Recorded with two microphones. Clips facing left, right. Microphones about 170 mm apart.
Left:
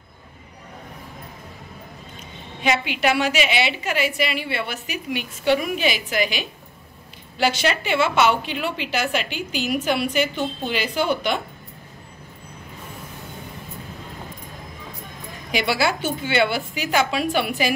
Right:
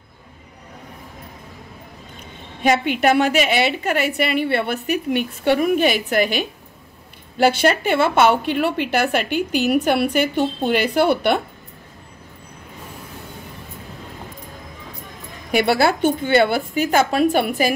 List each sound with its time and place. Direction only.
2.6 s a woman's voice: 50° right (ahead or behind)
15.5 s a woman's voice: 55° right (ahead or behind)